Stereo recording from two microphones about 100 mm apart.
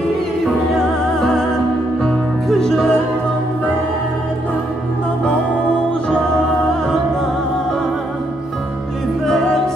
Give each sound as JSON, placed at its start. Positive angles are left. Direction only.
{"t": 0.7, "sound": "music", "side_deg": 5}
{"t": 9.2, "sound": "music", "side_deg": 5}